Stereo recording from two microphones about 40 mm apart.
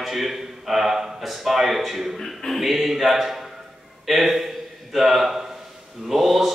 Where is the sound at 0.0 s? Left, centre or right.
Centre.